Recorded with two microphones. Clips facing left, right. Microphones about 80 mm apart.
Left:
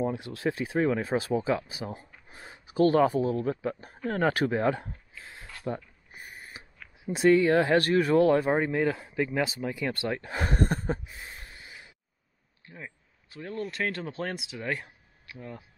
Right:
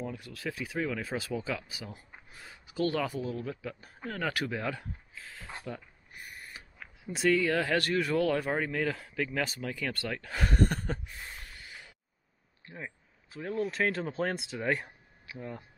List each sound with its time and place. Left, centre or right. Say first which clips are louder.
0.0 s speech: left 9 dB; left
6.1 s owl: left 1 dB; left
7.2 s speech: left 6 dB; left
12.6 s speech: right 1 dB; centre